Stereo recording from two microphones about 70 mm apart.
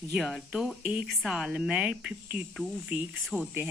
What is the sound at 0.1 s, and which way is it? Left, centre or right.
Speech, centre.